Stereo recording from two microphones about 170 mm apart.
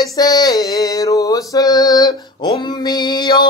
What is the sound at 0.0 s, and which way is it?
Mantra, 20° left (ahead or behind).